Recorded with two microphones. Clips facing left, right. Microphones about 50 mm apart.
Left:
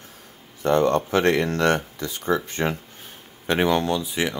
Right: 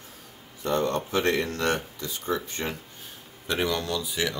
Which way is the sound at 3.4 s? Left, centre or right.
Left.